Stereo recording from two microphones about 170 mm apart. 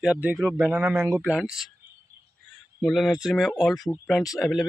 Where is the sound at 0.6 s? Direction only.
15° right (ahead or behind).